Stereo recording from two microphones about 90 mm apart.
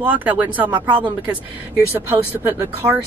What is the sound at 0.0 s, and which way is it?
Speech, 20° right (ahead or behind).